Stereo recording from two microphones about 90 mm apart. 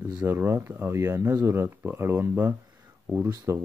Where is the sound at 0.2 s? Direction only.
20° right (ahead or behind).